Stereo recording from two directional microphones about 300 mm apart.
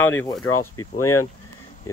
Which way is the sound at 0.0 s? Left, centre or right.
Centre.